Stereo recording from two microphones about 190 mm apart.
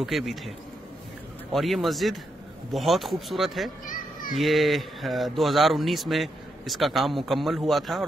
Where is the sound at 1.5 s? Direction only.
Centre (ahead or behind).